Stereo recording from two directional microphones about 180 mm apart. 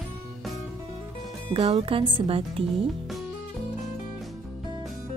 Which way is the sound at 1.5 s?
30° right (ahead or behind).